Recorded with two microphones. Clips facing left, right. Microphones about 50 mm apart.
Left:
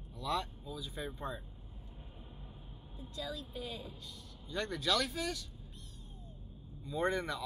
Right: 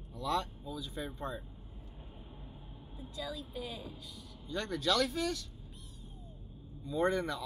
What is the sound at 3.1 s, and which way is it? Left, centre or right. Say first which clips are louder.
Speech: right 1 dB; centre.